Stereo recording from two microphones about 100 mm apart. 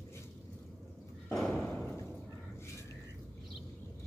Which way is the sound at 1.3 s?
5° left (ahead or behind).